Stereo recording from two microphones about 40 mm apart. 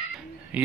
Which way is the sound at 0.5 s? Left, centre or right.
Right.